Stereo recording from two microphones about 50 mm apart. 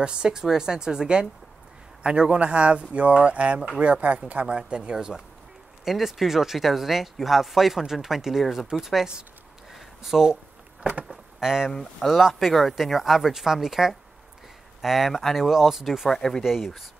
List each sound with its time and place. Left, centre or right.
0.0 s a woman's voice: centre
5.9 s speech: centre
9.7 s a sound: centre
11.7 s speech: centre
12.2 s speech: centre
16.1 s speech: centre
16.4 s speech: centre